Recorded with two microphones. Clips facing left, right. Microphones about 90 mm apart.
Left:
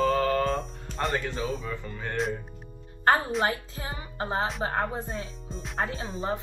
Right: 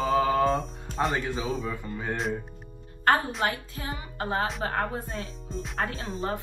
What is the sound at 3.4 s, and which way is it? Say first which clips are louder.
Speech: left 1 dB; 30° left (ahead or behind).